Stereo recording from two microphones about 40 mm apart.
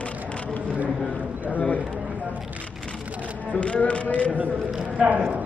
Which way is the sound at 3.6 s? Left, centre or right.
Left.